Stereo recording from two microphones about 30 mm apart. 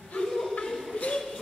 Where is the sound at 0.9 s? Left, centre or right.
Left.